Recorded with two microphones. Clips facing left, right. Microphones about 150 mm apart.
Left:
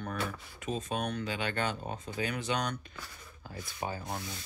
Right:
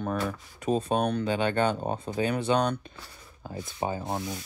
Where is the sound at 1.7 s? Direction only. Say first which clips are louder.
Right 8 dB; 45° right (ahead or behind).